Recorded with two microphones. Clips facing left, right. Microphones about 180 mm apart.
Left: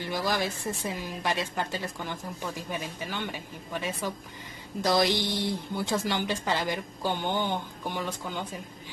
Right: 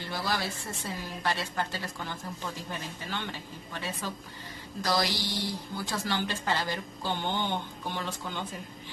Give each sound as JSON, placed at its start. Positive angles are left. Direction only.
{"t": 0.0, "sound": "a woman's voice", "side_deg": 15}